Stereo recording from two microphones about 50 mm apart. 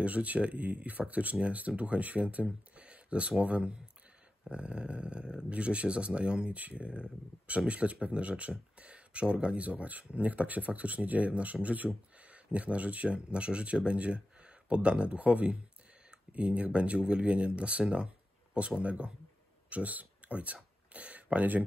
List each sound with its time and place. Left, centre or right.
0.0 s speech: right